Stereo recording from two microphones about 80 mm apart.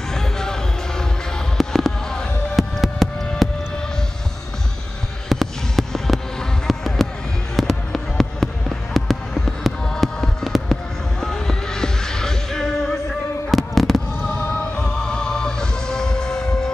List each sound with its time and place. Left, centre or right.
0.1 s music: centre
5.3 s fireworks: centre
15.0 s music: centre